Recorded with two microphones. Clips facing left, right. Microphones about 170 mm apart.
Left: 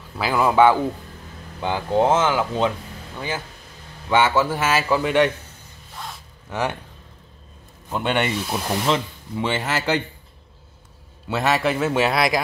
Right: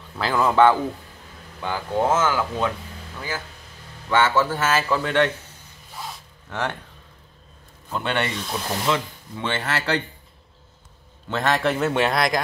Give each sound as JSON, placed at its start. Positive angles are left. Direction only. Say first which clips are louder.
{"t": 0.2, "sound": "speech", "louder": "left 1 dB", "side_deg": 10}
{"t": 1.6, "sound": "speech", "louder": "left 4 dB", "side_deg": 20}
{"t": 5.9, "sound": "zipper", "louder": "even", "side_deg": 0}
{"t": 6.5, "sound": "speech", "louder": "left 3 dB", "side_deg": 10}
{"t": 7.9, "sound": "speech", "louder": "left 3 dB", "side_deg": 15}
{"t": 11.2, "sound": "a man's voice", "louder": "left 1 dB", "side_deg": 5}